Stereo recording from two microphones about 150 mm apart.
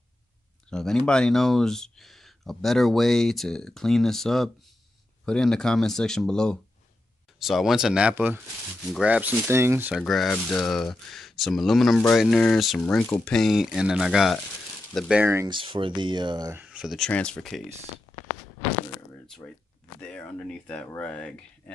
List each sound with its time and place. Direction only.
0.7 s speech: 5° left (ahead or behind); by 9.9 s 15° right (ahead or behind)
9.9 s speech: centre (ahead or behind)
15.4 s speech: 35° right (ahead or behind)
16.5 s speech: 5° right (ahead or behind)
19.2 s a sound: 5° left (ahead or behind)
20.0 s speech: 10° left (ahead or behind)